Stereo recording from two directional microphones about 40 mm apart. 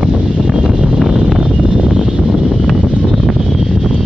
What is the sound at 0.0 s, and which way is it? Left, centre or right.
Wind noise, centre.